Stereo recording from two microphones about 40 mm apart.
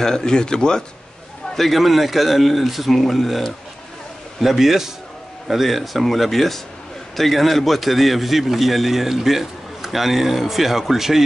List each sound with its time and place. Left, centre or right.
0.0 s speech: centre
1.5 s a man's voice: centre